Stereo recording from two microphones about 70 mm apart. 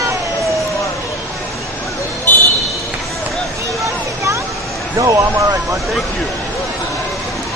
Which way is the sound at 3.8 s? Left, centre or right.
Right.